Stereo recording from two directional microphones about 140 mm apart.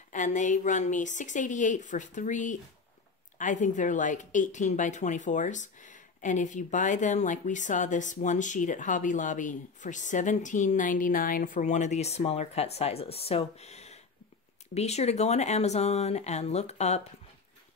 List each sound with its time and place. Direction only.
0.1 s a woman's voice: 65° left (ahead or behind)